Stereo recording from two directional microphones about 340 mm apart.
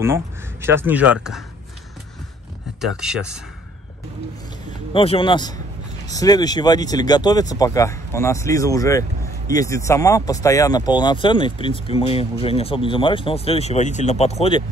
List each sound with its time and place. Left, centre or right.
0.0 s speech: centre
2.8 s speech: centre
4.9 s speech: centre